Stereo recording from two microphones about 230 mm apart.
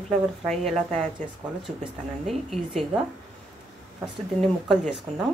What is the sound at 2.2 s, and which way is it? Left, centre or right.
Speech, centre.